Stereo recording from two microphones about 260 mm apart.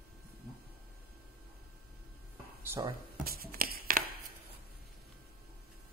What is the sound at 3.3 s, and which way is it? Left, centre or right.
Writing, right.